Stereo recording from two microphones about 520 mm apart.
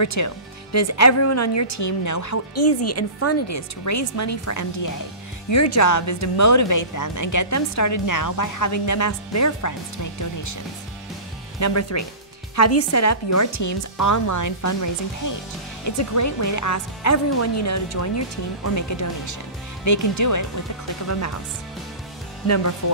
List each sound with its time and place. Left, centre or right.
0.0 s speech: left
11.6 s speech: left
22.5 s speech: left